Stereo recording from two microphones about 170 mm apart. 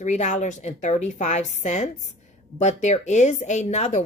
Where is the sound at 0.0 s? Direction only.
45° left (ahead or behind).